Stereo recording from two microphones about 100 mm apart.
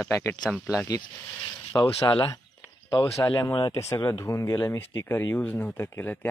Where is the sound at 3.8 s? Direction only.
35° left (ahead or behind).